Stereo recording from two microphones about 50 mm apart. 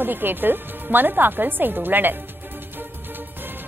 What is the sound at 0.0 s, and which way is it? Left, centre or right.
A woman's voice, right.